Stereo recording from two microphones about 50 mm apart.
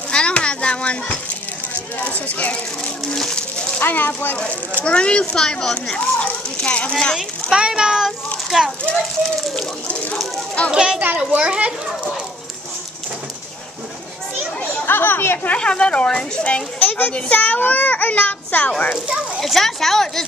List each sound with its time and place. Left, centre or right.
0.1 s a child's voice: left
3.1 s a sound: centre
3.8 s a child's voice: left
4.7 s a child's voice: left
7.5 s a child's voice: centre
8.9 s a child's voice: centre
10.7 s a child's voice: centre
14.9 s speech: left
15.4 s speech: left
16.8 s a sound: left
17.1 s a child's voice: left
19.4 s speech: centre